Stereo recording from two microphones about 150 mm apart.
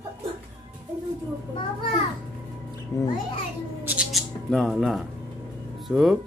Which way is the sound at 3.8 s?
5° right (ahead or behind).